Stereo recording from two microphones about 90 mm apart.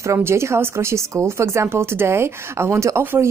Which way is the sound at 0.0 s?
30° right (ahead or behind).